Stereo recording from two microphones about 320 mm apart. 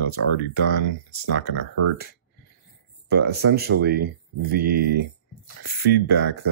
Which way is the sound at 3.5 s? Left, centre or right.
Right.